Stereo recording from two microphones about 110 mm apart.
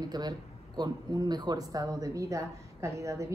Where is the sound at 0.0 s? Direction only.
40° right (ahead or behind).